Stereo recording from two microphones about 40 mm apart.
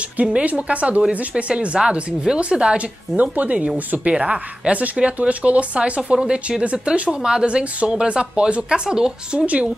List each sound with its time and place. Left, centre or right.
0.2 s speech: right
1.8 s speech: right
3.2 s speech: right
4.1 s speech: right
6.9 s speech: centre